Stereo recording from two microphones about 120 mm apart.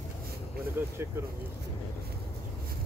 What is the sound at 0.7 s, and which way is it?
Speech, 20° right (ahead or behind).